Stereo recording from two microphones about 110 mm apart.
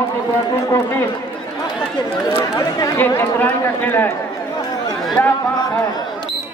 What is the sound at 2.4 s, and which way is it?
Speech, 30° left (ahead or behind).